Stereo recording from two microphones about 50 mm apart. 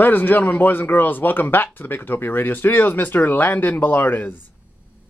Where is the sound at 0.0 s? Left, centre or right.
Left.